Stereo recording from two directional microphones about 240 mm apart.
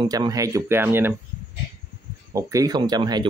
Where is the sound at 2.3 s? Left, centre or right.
Centre.